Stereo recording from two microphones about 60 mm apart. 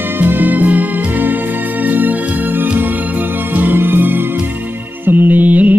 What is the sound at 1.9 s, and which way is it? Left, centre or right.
Music, right.